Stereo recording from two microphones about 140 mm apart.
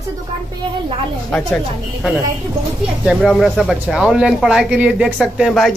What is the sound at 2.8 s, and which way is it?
Speech, 5° right (ahead or behind).